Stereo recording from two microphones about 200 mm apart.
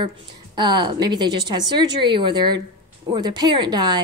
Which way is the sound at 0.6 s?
20° right (ahead or behind).